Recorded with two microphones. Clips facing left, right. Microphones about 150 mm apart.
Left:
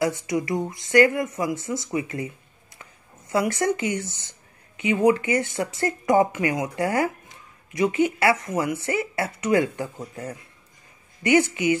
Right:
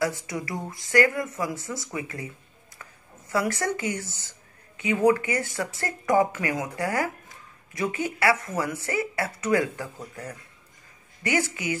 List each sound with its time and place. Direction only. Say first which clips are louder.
0.0 s speech: left 4 dB; 20° left (ahead or behind)